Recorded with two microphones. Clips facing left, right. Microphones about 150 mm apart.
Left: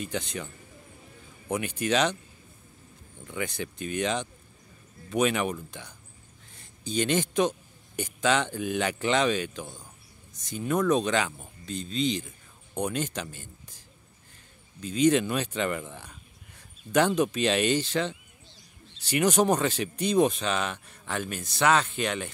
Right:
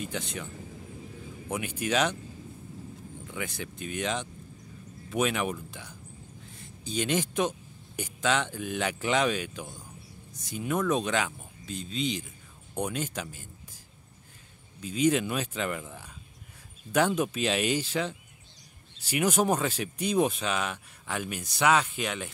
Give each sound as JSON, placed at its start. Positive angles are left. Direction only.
{"t": 0.0, "sound": "speech", "side_deg": 0}
{"t": 1.5, "sound": "speech", "side_deg": -5}
{"t": 3.3, "sound": "speech", "side_deg": 0}
{"t": 14.8, "sound": "speech", "side_deg": -5}